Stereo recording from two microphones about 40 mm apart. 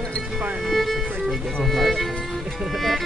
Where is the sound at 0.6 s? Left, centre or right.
Centre.